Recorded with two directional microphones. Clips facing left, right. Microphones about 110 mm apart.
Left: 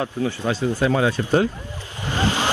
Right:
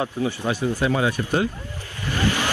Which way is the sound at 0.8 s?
30° left (ahead or behind).